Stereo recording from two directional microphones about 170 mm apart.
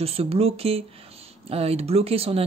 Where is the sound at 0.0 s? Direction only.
35° right (ahead or behind).